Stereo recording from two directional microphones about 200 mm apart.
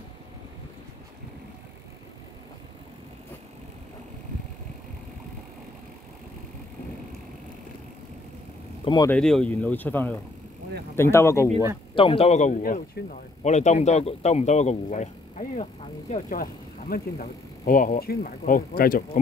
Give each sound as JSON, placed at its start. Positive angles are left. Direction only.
{"t": 8.8, "sound": "speech", "side_deg": 20}
{"t": 9.1, "sound": "speech", "side_deg": 5}
{"t": 11.9, "sound": "speech", "side_deg": 25}